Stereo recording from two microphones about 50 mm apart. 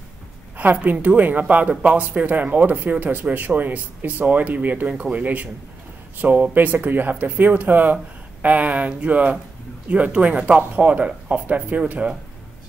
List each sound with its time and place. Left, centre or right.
0.6 s a woman's voice: right